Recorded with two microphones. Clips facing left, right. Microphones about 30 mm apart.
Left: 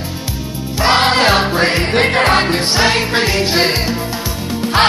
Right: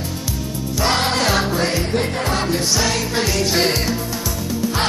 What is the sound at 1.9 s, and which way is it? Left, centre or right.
Music, left.